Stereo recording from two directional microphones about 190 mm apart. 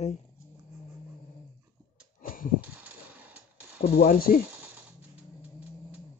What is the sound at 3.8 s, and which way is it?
Speech, 55° left (ahead or behind).